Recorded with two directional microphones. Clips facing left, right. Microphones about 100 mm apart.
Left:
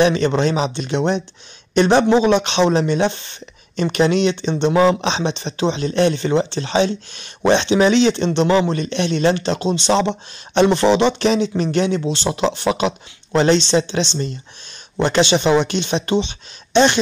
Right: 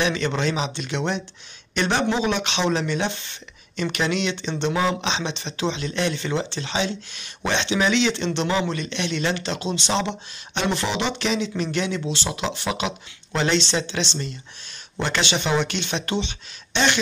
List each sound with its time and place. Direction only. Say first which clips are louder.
0.0 s speech: left 7 dB; 35° left (ahead or behind)